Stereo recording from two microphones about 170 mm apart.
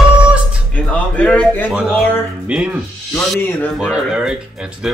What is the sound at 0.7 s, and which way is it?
Speech, 10° left (ahead or behind).